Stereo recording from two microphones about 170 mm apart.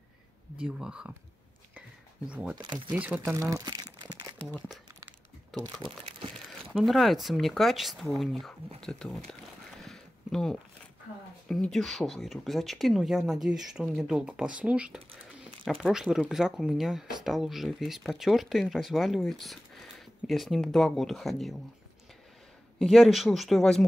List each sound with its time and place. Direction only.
0.6 s speech: 5° right (ahead or behind)
2.2 s speech: 5° right (ahead or behind)
2.6 s speech: 25° right (ahead or behind)
2.9 s speech: 10° right (ahead or behind); by 4.3 s 25° right (ahead or behind)
5.6 s speech: 30° right (ahead or behind)
6.7 s speech: centre (ahead or behind)
9.8 s a sound: 5° left (ahead or behind)
11.4 s speech: 5° left (ahead or behind)
22.8 s speech: centre (ahead or behind)